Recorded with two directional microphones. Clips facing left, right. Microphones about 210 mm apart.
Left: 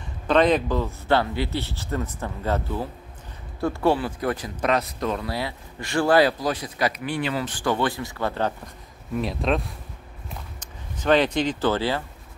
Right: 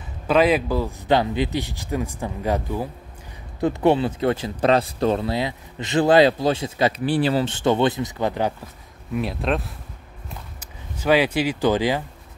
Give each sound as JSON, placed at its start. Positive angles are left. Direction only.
{"t": 0.3, "sound": "speech", "side_deg": -5}
{"t": 9.1, "sound": "speech", "side_deg": 0}